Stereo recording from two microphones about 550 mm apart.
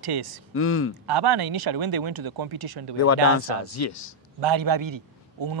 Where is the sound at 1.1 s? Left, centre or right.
Right.